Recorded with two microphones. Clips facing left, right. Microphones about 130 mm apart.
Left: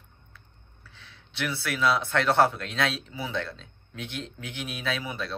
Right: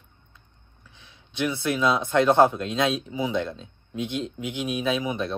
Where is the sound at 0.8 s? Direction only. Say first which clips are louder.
Left 1 dB; 15° right (ahead or behind).